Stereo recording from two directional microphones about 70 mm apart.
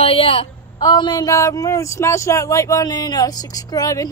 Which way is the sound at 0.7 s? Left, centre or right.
Left.